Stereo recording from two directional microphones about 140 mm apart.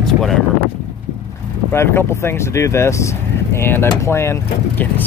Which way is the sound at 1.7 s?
15° left (ahead or behind).